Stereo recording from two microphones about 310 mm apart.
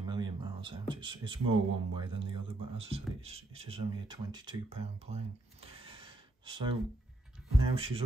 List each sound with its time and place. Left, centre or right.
0.0 s speech: centre
7.7 s speech: centre